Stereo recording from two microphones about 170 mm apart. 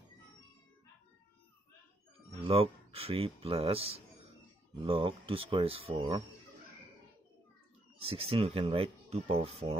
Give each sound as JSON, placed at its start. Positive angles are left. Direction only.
{"t": 2.4, "sound": "speech", "side_deg": -35}
{"t": 8.0, "sound": "speech", "side_deg": -35}